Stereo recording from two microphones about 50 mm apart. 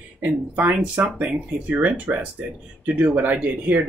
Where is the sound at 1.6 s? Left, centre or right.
Right.